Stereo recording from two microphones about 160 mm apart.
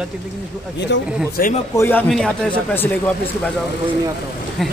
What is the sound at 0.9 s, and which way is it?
Speech, 90° left.